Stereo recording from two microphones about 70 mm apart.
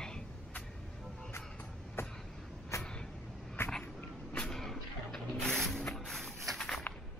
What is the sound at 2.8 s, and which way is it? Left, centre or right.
Vehicle, centre.